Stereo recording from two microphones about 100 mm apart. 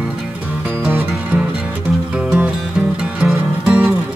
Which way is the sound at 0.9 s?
20° right (ahead or behind).